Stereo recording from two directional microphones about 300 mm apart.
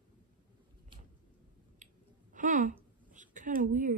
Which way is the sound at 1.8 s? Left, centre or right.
Right.